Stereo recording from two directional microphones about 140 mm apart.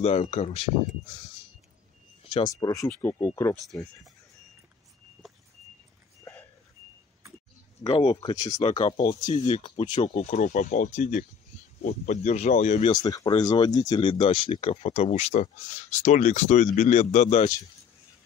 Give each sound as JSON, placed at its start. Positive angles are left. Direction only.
{"t": 0.0, "sound": "speech", "side_deg": 45}
{"t": 2.6, "sound": "speech", "side_deg": 25}
{"t": 7.8, "sound": "speech", "side_deg": 35}
{"t": 8.5, "sound": "speech", "side_deg": 50}
{"t": 9.8, "sound": "speech", "side_deg": 60}
{"t": 12.9, "sound": "speech", "side_deg": 30}